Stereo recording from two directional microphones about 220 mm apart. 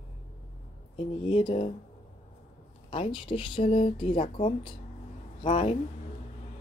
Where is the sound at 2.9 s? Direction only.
25° left (ahead or behind).